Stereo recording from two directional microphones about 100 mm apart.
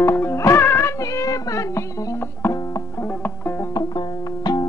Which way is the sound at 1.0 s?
35° left (ahead or behind).